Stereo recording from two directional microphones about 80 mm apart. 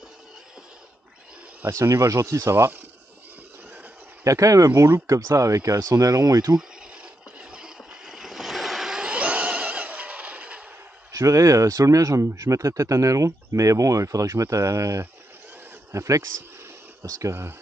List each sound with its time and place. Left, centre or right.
1.7 s speech: right
2.5 s speech: right
4.2 s speech: right
7.3 s vehicle: centre
11.1 s speech: right